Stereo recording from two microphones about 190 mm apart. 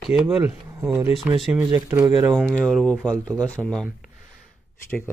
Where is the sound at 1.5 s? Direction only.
15° right (ahead or behind); by 4.1 s centre (ahead or behind).